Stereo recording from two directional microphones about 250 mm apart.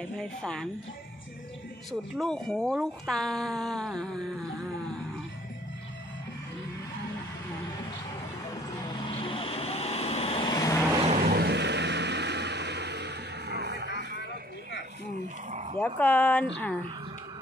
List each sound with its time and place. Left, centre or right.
0.2 s speech: centre
1.9 s speech: centre
9.0 s vehicle: left
11.1 s vehicle: right
15.5 s dog: right
15.8 s speech: centre